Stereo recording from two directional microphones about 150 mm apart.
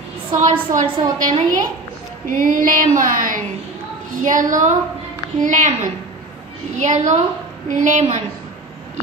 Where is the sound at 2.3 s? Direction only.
65° right (ahead or behind).